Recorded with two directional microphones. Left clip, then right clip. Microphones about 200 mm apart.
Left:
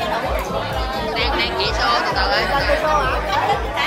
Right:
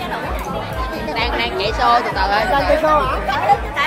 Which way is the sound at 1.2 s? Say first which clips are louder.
Right 1 dB; 15° right (ahead or behind).